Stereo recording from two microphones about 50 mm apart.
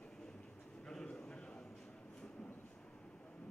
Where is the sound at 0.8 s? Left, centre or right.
Centre.